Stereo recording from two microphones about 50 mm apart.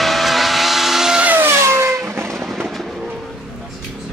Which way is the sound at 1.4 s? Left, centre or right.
Right.